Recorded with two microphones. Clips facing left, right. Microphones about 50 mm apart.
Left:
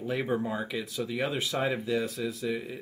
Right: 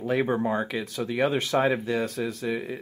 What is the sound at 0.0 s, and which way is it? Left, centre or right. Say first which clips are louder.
Speech: right 5 dB; right.